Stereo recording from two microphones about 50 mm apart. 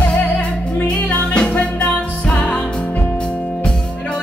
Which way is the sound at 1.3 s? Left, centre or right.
Centre.